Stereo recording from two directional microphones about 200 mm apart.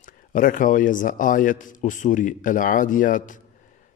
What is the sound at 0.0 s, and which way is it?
Speech, 40° left (ahead or behind).